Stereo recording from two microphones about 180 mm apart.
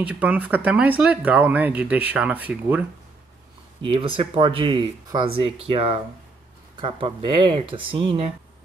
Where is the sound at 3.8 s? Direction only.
30° right (ahead or behind).